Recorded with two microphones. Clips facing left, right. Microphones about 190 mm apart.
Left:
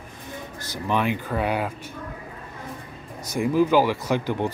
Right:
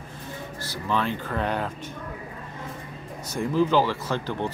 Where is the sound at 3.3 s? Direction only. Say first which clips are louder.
Left 3 dB; 10° left (ahead or behind).